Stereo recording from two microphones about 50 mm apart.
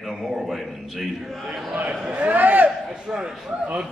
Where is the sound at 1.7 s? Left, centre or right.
Right.